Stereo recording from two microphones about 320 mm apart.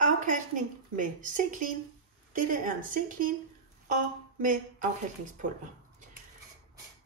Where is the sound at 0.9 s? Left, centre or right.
Right.